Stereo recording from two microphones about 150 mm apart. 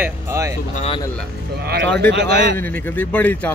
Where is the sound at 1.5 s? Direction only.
90° right.